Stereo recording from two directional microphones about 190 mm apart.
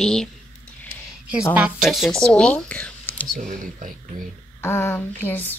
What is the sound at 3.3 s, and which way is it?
Speech, 45° right (ahead or behind).